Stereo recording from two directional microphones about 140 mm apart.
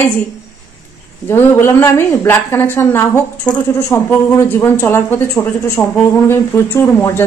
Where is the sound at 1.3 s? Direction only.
20° left (ahead or behind).